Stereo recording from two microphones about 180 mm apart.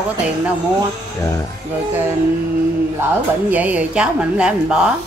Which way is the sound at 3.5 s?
10° right (ahead or behind).